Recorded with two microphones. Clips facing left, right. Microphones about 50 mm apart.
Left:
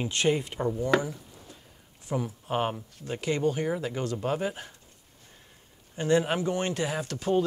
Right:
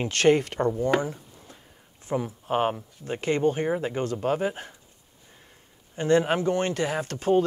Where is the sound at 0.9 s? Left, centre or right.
Right.